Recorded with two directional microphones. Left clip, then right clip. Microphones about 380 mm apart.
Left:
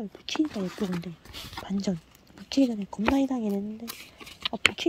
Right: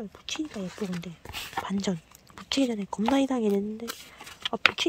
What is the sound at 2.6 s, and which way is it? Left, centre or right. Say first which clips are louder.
A woman's voice: even; centre.